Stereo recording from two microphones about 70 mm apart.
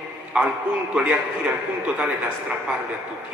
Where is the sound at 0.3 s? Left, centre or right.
Centre.